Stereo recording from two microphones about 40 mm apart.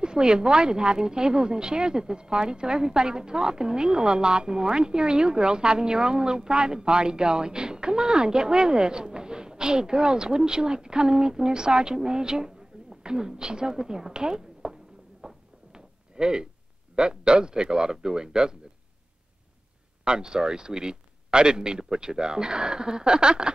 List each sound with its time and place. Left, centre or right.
0.0 s speech: right
15.2 s a sound: centre
16.9 s speech: right
20.1 s speech: centre